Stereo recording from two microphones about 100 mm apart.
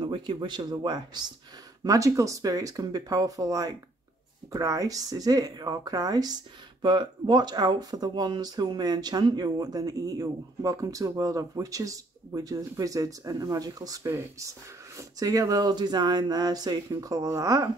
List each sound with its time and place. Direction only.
0.0 s speech: 55° right (ahead or behind)
1.9 s speech: 35° right (ahead or behind)